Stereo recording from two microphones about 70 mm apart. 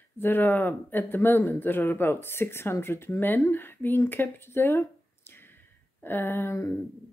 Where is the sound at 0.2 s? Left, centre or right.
Left.